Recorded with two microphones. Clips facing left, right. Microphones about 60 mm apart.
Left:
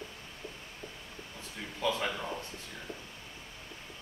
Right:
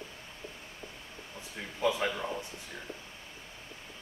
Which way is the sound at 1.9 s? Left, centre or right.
Centre.